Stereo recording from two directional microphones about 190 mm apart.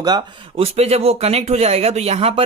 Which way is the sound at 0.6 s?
35° right (ahead or behind).